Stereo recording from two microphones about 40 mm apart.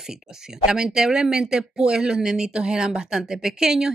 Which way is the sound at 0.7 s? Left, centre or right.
Centre.